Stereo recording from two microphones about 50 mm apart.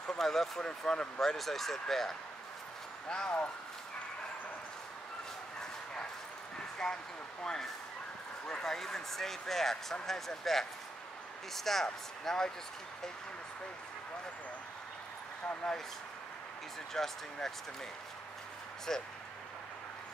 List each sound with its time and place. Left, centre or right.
0.2 s speech: centre
3.1 s speech: centre
6.8 s speech: centre
16.9 s speech: centre
18.9 s speech: centre